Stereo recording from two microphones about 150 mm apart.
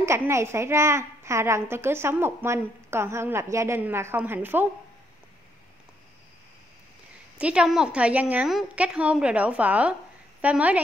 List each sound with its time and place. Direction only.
0.0 s a woman's voice: 20° right (ahead or behind)
7.3 s a woman's voice: 5° right (ahead or behind)